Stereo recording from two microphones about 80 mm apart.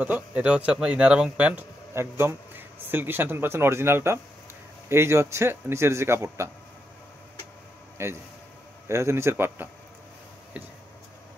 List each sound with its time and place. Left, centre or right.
0.0 s a man's voice: centre; by 6.5 s right
8.0 s a man's voice: right